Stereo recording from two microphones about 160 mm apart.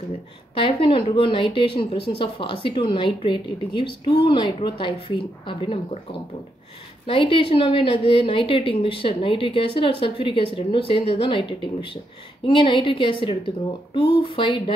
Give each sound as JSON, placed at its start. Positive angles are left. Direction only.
{"t": 0.6, "sound": "speech", "side_deg": 35}
{"t": 7.1, "sound": "speech", "side_deg": 35}